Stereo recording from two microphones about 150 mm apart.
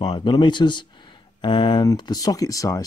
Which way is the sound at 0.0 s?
30° left (ahead or behind).